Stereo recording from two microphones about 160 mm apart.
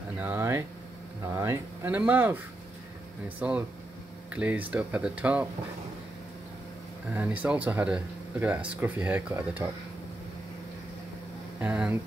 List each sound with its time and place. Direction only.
0.2 s speech: 15° right (ahead or behind)
7.1 s speech: 10° right (ahead or behind)
11.6 s speech: 10° right (ahead or behind)